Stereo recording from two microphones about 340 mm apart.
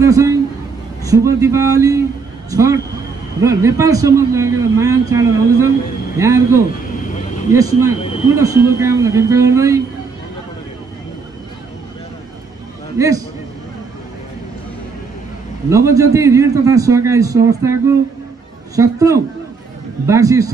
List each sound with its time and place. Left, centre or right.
0.0 s a man's voice: centre
12.9 s a man's voice: centre
15.7 s a man's voice: centre